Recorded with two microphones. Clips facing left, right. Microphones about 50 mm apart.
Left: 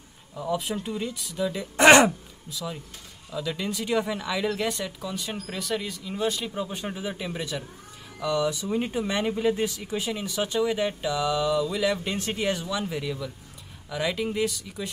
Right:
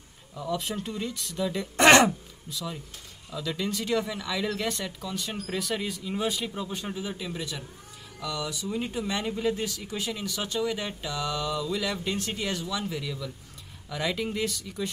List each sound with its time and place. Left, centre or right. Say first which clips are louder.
0.4 s speech: left 3 dB; centre
6.5 s speech: left 3 dB; centre
6.8 s speech: left 2 dB; left
13.8 s speech: left 2 dB; centre
14.5 s speech: right 2 dB; centre